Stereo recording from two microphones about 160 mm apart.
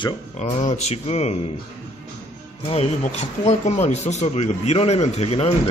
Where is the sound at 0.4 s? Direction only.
45° left (ahead or behind).